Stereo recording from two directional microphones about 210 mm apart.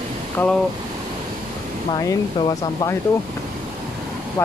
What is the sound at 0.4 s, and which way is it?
Speech, 10° left (ahead or behind).